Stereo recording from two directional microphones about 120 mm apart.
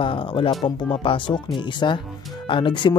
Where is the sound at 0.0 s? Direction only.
45° left (ahead or behind).